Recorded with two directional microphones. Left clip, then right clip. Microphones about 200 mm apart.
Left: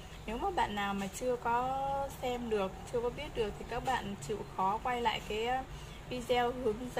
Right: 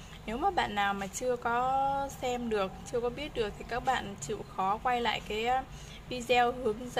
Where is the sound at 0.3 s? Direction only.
35° right (ahead or behind).